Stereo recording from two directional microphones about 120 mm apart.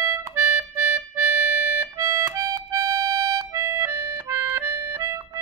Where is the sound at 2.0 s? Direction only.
25° right (ahead or behind).